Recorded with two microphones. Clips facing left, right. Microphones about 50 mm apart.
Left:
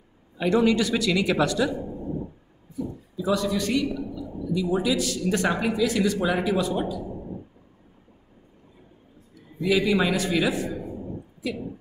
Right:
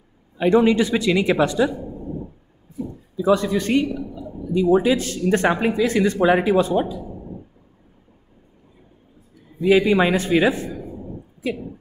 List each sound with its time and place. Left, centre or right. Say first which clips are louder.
0.4 s a man's voice: right 5 dB; right
3.3 s a man's voice: right 6 dB; right
9.7 s a man's voice: right 6 dB; right
10.8 s a sound: right 1 dB; centre
11.4 s a man's voice: right 5 dB; right